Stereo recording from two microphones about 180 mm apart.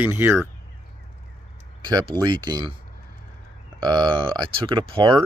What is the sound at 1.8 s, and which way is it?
Speech, 20° right (ahead or behind).